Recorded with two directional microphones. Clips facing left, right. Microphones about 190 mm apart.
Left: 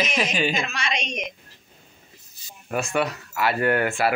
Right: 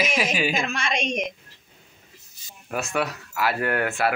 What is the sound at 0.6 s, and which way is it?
Speech, 50° right (ahead or behind).